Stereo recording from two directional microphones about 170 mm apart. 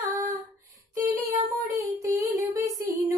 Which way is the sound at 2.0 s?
20° right (ahead or behind).